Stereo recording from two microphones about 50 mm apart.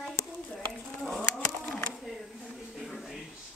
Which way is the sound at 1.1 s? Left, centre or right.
Centre.